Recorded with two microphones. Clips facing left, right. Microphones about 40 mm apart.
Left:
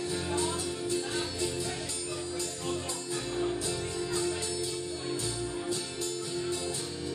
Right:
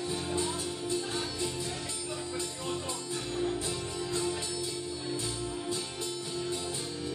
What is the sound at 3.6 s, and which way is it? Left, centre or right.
Music, right.